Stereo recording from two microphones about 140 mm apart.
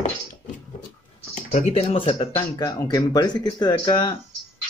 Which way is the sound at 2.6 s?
30° left (ahead or behind).